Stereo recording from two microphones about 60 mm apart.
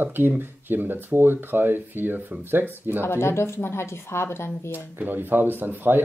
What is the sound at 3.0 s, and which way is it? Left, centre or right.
A woman's voice, left.